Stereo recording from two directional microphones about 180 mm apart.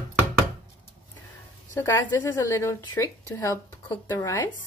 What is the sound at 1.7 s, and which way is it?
A woman's voice, 15° left (ahead or behind).